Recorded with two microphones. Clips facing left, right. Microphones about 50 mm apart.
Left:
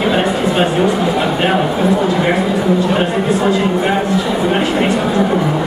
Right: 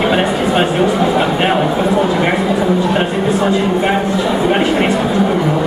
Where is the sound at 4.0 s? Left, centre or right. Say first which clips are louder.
Right 1 dB; centre.